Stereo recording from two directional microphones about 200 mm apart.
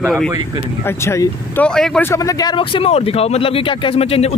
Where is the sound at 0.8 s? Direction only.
15° left (ahead or behind).